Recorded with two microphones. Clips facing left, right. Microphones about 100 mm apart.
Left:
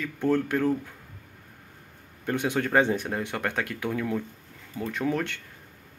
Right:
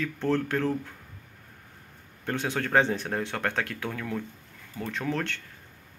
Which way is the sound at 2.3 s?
15° left (ahead or behind).